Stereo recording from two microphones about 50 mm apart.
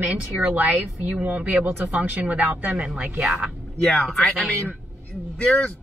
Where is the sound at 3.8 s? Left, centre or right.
Centre.